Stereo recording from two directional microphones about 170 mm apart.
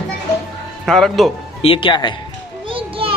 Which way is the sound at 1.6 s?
30° left (ahead or behind).